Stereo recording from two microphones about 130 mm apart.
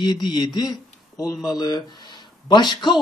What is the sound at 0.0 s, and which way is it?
A woman's voice, 35° left (ahead or behind).